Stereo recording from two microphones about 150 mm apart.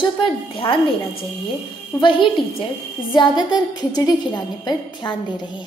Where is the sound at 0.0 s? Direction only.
35° left (ahead or behind).